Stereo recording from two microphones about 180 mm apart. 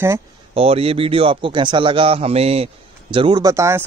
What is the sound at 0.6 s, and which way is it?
A man's voice, 35° right (ahead or behind).